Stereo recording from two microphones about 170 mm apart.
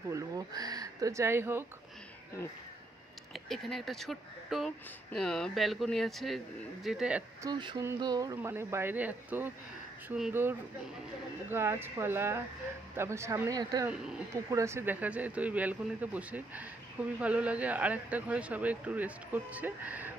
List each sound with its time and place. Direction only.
0.1 s speech: 20° right (ahead or behind)
3.3 s speech: centre (ahead or behind)
7.4 s speech: 25° right (ahead or behind); by 10.5 s 10° right (ahead or behind)
11.5 s speech: 15° right (ahead or behind)
13.8 s speech: 5° right (ahead or behind)
14.3 s speech: 15° right (ahead or behind)